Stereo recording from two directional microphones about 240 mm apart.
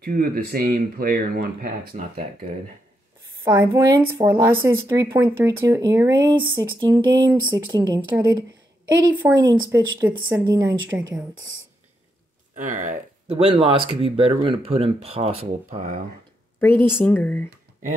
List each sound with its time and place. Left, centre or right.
0.0 s speech: right
3.4 s speech: centre
12.5 s speech: right
16.5 s speech: centre